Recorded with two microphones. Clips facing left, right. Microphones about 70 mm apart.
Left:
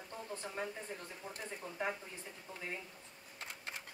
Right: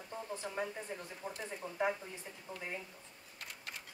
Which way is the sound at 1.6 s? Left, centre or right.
Centre.